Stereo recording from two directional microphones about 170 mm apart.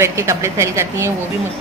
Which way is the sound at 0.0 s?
15° right (ahead or behind).